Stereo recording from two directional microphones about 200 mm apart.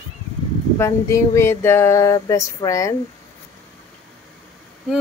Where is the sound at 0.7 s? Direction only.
15° left (ahead or behind).